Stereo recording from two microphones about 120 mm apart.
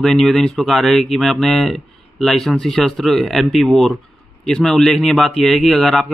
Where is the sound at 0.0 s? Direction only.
5° left (ahead or behind).